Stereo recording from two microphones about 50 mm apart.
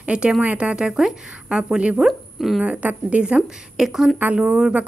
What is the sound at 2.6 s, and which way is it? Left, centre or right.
A woman's voice, right.